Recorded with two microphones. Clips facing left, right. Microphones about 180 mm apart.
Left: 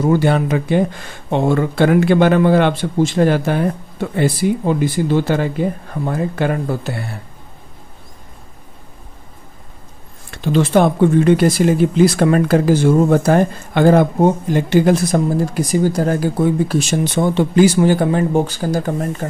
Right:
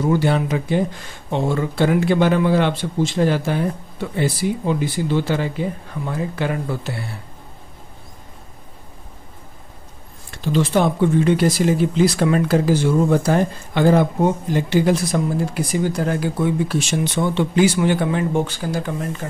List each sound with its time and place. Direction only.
0.0 s a man's voice: 55° left (ahead or behind)
10.3 s speech: 60° left (ahead or behind); by 19.2 s 45° left (ahead or behind)